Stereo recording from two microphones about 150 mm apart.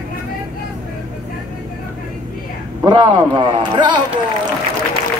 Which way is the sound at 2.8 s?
30° right (ahead or behind).